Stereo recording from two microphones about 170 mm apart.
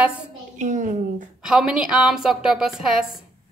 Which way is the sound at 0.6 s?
45° right (ahead or behind).